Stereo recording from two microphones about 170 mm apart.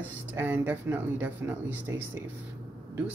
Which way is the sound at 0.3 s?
10° right (ahead or behind).